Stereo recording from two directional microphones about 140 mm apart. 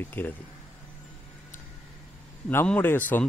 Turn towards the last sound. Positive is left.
turn(degrees=15)  # may be behind; listen again after turning